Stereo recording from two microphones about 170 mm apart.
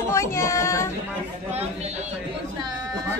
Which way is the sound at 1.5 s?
40° right (ahead or behind).